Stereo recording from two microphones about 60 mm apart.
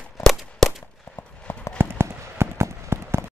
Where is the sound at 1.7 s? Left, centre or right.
Right.